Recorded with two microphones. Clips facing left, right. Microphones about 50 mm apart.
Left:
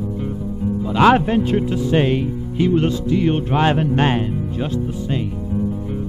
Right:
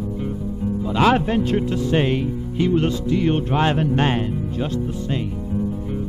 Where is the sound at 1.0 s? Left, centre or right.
Centre.